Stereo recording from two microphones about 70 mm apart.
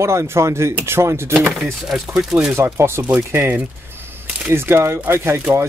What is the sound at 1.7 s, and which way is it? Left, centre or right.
Speech, centre.